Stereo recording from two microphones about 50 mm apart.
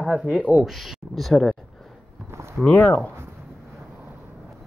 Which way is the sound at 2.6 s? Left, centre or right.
Left.